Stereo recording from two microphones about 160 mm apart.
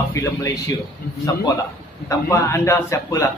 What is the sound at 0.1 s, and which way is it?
Speech, 20° left (ahead or behind).